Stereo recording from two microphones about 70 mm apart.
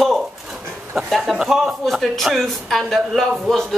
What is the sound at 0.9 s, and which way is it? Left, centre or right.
Speech, centre.